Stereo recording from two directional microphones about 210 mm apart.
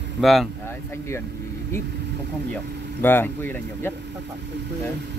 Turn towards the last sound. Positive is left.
turn(degrees=10)  # may be behind; listen again after turning